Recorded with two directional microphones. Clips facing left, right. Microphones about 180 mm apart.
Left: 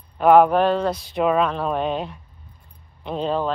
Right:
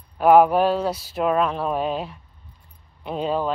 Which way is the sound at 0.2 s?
5° right (ahead or behind).